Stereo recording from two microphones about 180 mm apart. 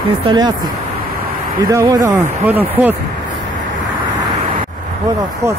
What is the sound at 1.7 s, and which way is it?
Speech, 20° right (ahead or behind).